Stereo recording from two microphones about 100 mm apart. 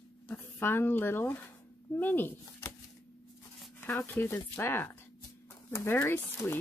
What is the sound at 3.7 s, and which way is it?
Speech, 20° left (ahead or behind).